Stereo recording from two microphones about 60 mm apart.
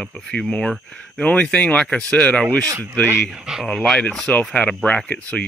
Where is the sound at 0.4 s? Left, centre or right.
Centre.